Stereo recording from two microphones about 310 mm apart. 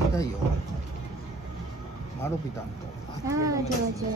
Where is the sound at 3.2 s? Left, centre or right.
Centre.